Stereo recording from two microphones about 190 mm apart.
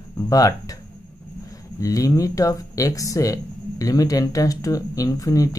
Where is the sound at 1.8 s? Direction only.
15° left (ahead or behind).